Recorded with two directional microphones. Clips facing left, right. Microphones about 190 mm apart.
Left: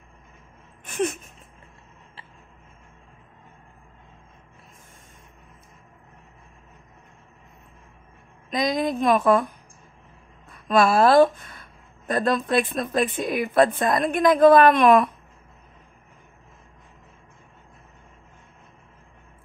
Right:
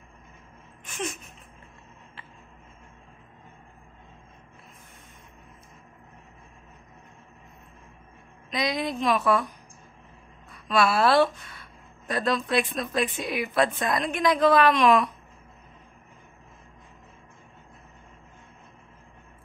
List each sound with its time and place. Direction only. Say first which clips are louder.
0.8 s a sound: left 8 dB; 55° left (ahead or behind)
8.5 s a woman's voice: left 4 dB; 45° left (ahead or behind)
10.5 s a woman's voice: left 4 dB; 50° left (ahead or behind)